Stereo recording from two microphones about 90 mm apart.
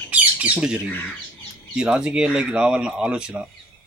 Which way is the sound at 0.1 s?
15° right (ahead or behind).